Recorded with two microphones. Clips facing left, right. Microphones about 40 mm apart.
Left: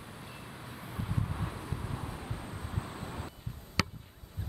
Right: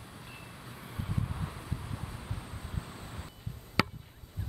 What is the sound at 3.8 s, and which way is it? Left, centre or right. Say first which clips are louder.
Chop: right 3 dB; right.